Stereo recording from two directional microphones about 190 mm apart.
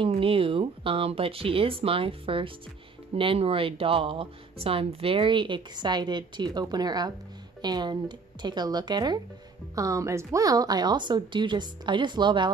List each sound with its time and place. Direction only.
0.0 s speech: 30° right (ahead or behind)